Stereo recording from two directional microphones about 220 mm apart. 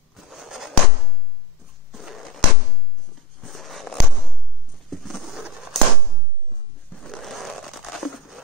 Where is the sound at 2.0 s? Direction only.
Centre (ahead or behind).